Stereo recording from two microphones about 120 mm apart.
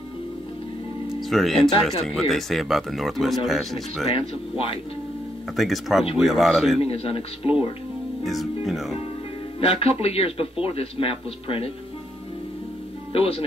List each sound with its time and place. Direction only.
1.3 s speech: centre (ahead or behind)
5.6 s speech: centre (ahead or behind)
6.8 s speech: 50° left (ahead or behind)
8.2 s speech: centre (ahead or behind)
9.8 s speech: 55° left (ahead or behind)
13.1 s speech: 50° left (ahead or behind)